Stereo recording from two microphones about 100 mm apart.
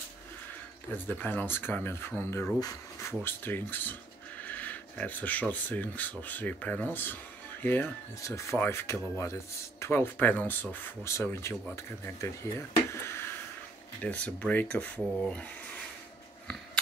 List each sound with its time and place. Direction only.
0.9 s speech: 20° left (ahead or behind); by 3.1 s 35° left (ahead or behind)
3.1 s speech: 20° left (ahead or behind)
12.9 s a sound: 25° left (ahead or behind)
14.0 s speech: 10° left (ahead or behind)